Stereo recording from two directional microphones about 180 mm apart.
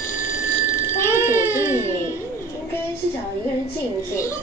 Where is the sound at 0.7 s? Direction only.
50° left (ahead or behind).